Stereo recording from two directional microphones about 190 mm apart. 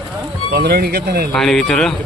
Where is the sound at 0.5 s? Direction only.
55° right (ahead or behind).